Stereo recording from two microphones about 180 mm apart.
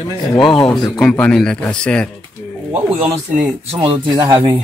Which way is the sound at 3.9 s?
20° right (ahead or behind).